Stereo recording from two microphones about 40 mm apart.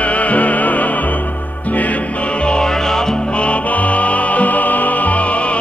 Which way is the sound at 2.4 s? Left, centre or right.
Left.